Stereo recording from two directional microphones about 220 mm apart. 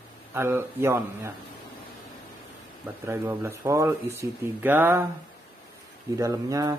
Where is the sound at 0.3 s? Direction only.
10° right (ahead or behind).